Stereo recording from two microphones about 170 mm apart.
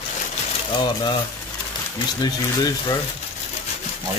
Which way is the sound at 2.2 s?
25° left (ahead or behind).